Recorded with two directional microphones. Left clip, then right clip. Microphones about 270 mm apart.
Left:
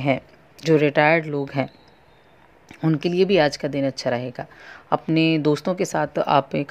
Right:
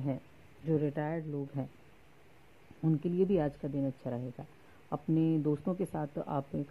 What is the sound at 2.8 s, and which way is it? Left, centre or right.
Speech, left.